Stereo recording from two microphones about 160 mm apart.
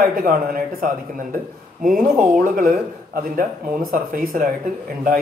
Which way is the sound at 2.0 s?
60° right (ahead or behind).